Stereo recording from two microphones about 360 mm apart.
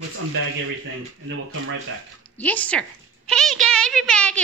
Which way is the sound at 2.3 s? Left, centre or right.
Centre.